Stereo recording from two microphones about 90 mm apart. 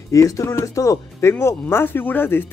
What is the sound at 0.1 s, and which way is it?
Speech, 35° left (ahead or behind).